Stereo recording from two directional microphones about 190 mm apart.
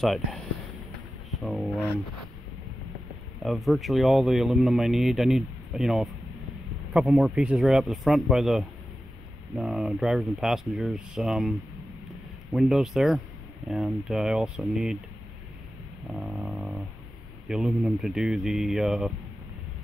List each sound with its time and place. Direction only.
0.0 s speech: centre (ahead or behind)
1.4 s speech: centre (ahead or behind)
3.4 s speech: centre (ahead or behind)
12.5 s speech: centre (ahead or behind)
16.2 s dog: centre (ahead or behind)
17.5 s speech: 5° right (ahead or behind)